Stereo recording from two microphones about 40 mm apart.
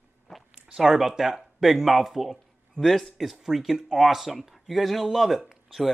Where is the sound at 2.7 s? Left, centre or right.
Centre.